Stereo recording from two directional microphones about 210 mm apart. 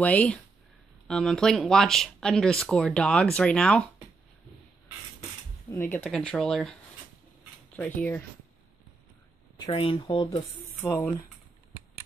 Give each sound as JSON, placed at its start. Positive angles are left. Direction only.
{"t": 0.0, "sound": "speech", "side_deg": 5}
{"t": 5.7, "sound": "speech", "side_deg": 10}
{"t": 7.7, "sound": "speech", "side_deg": 10}
{"t": 9.7, "sound": "speech", "side_deg": 25}
{"t": 10.8, "sound": "speech", "side_deg": 10}